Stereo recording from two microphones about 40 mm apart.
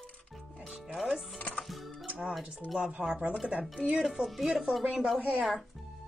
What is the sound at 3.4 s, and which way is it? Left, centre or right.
Speech, right.